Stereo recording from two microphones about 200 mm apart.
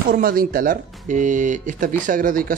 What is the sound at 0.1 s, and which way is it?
Speech, 45° right (ahead or behind).